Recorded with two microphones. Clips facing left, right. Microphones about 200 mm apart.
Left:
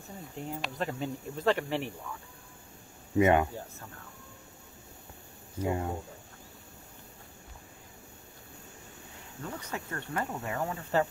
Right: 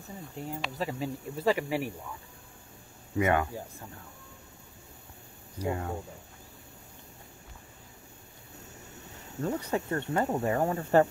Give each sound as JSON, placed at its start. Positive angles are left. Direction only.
{"t": 0.4, "sound": "speech", "side_deg": 0}
{"t": 3.2, "sound": "speech", "side_deg": 25}
{"t": 5.6, "sound": "speech", "side_deg": 20}
{"t": 9.4, "sound": "speech", "side_deg": -35}
{"t": 10.2, "sound": "speech", "side_deg": -40}